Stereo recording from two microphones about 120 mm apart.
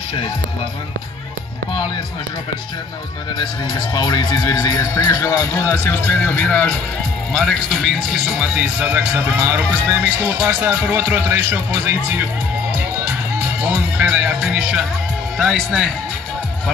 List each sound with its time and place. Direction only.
3.3 s speech: 40° left (ahead or behind); by 11.9 s 15° right (ahead or behind)
13.6 s music: 10° right (ahead or behind)
15.3 s speech: centre (ahead or behind)